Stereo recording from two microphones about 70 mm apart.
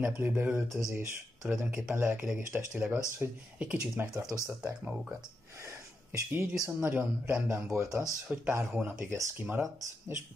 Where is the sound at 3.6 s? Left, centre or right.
Centre.